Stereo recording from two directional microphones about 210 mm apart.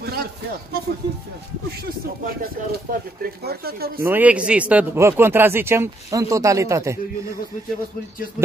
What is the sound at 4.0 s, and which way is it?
A man's voice, 10° right (ahead or behind).